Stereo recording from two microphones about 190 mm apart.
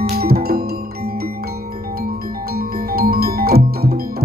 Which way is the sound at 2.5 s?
50° right (ahead or behind).